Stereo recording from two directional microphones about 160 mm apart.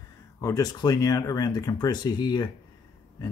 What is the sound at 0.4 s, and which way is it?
Speech, 20° left (ahead or behind).